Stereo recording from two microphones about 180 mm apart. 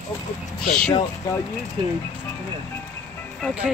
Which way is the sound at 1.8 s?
30° right (ahead or behind).